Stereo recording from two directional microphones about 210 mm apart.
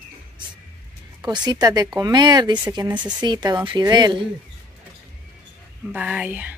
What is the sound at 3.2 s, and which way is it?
Speech, 20° right (ahead or behind).